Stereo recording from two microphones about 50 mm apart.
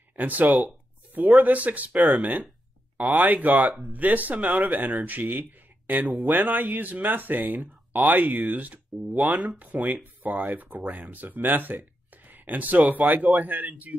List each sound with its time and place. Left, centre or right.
0.1 s speech: right